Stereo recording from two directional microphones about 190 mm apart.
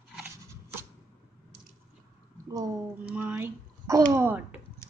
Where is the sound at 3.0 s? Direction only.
5° right (ahead or behind).